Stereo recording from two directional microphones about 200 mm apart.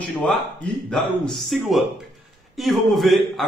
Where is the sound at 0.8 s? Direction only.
5° left (ahead or behind).